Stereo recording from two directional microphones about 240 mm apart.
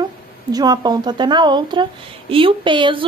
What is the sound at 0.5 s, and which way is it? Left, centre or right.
A woman's voice, centre.